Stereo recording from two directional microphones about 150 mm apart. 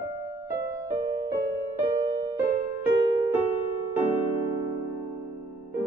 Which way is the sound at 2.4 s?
15° right (ahead or behind).